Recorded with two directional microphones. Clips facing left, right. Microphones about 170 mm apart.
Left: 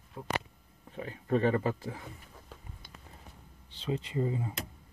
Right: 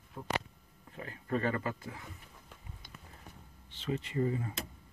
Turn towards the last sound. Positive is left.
turn(degrees=20)  # may be behind; listen again after turning